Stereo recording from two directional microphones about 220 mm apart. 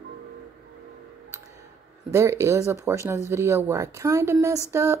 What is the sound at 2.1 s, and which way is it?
Speech, 15° right (ahead or behind).